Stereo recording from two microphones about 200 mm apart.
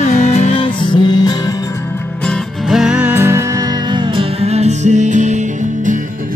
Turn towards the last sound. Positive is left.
turn(degrees=-40)  # may be behind; listen again after turning